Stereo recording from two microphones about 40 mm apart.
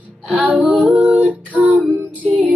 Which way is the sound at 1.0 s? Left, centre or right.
Right.